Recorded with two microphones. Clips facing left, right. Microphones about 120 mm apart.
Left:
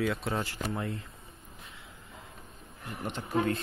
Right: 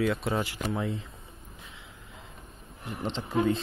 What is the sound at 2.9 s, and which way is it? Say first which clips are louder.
Speech: right 3 dB; 25° right (ahead or behind).